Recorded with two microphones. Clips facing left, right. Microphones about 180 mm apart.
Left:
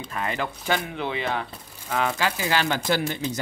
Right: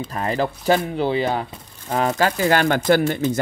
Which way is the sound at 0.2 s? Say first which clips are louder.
Right 6 dB; 35° right (ahead or behind).